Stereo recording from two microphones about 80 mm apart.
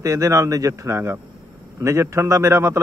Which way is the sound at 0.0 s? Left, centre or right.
Right.